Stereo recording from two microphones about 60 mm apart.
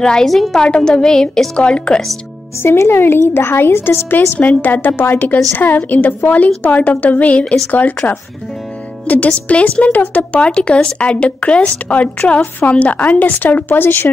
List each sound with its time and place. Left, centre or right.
0.0 s a woman's voice: centre
0.7 s a woman's voice: centre
2.6 s a woman's voice: left
4.4 s a woman's voice: left
9.0 s speech: left